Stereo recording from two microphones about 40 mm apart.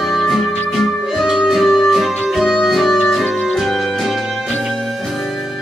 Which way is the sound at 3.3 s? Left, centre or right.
Centre.